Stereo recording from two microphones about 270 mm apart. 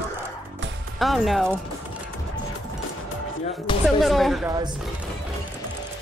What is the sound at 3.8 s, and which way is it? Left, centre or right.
Speech, centre.